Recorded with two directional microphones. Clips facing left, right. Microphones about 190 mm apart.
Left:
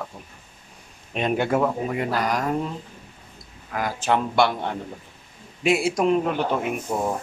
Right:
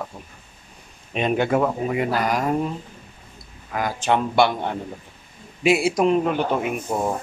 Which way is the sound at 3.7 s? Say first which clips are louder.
Right 1 dB; centre (ahead or behind).